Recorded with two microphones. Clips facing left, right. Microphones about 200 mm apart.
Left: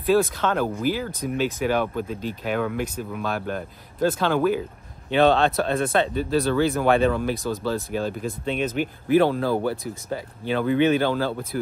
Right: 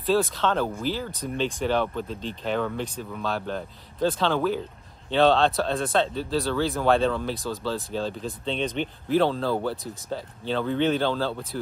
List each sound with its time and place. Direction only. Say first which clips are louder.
0.4 s speech: left 2 dB; 10° left (ahead or behind)